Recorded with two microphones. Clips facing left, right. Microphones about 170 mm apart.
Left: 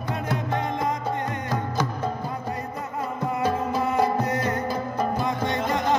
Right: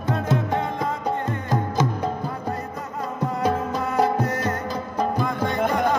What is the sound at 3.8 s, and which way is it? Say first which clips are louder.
Music: right 2 dB; 20° left (ahead or behind).